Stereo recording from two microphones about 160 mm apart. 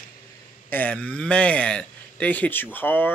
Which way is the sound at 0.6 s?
10° left (ahead or behind).